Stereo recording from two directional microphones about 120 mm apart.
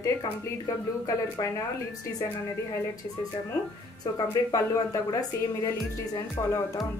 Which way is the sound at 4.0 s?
30° left (ahead or behind).